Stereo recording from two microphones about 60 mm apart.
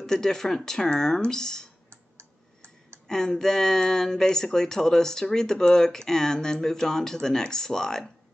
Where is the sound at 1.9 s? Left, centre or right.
Right.